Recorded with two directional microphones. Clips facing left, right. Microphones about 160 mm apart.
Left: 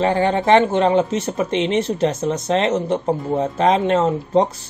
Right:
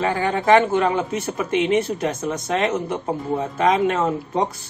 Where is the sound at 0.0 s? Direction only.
30° left (ahead or behind).